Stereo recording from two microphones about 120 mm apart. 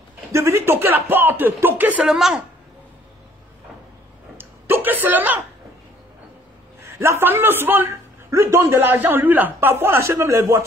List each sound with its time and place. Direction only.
0.3 s a man's voice: 25° right (ahead or behind)
2.0 s a woman's voice: 5° right (ahead or behind)
4.4 s a sound: 15° right (ahead or behind)
6.8 s a man's voice: 20° right (ahead or behind)